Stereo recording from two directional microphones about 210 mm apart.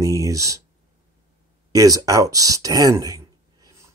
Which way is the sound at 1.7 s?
15° right (ahead or behind).